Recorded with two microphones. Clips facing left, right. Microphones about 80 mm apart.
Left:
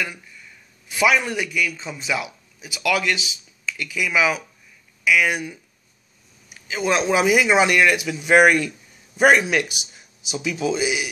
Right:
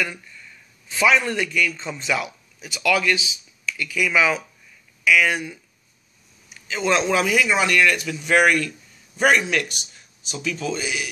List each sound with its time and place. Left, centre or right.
0.0 s a man's voice: centre
4.0 s speech: centre
6.7 s speech: centre